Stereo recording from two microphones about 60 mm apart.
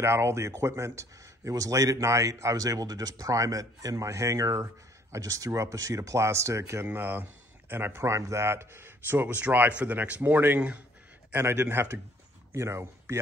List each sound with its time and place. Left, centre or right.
0.0 s speech: right
1.5 s speech: right
6.9 s speech: right
11.3 s speech: right
12.5 s speech: right